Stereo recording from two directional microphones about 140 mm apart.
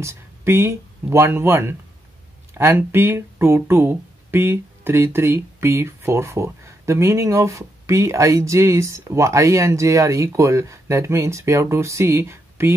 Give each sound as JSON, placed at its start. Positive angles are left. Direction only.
{"t": 0.0, "sound": "speech", "side_deg": -20}